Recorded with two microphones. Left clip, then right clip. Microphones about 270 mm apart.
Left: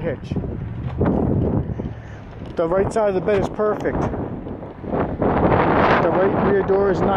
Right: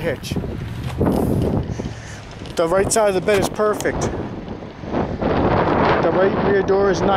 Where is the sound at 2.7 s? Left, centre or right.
Centre.